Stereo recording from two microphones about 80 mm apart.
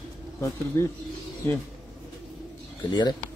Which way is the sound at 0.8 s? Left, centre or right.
Left.